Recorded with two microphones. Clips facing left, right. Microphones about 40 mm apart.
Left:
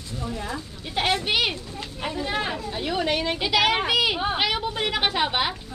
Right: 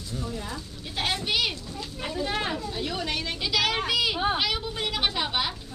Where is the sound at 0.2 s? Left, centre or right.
Left.